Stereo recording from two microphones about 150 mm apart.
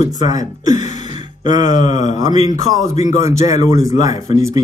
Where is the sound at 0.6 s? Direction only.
55° left (ahead or behind).